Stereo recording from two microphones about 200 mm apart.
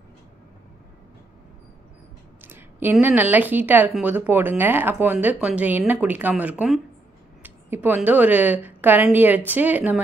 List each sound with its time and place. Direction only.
2.4 s speech: 10° right (ahead or behind)